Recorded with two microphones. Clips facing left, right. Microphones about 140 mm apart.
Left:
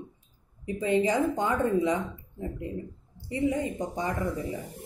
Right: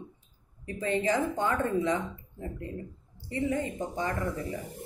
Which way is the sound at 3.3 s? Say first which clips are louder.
Left 2 dB; 15° left (ahead or behind).